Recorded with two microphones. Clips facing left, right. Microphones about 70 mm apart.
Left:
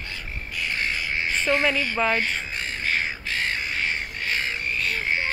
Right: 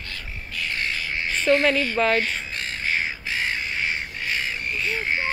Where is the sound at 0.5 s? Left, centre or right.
Centre.